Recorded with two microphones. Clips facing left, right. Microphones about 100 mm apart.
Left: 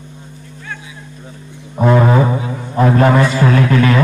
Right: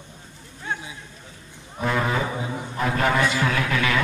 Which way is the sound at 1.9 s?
45° left (ahead or behind).